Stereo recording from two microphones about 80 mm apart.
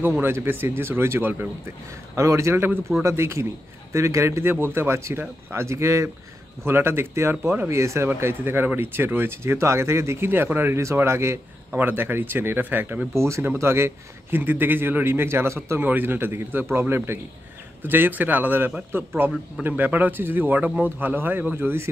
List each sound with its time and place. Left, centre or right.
0.2 s a man's voice: right
7.8 s a man's voice: right
13.1 s a man's voice: right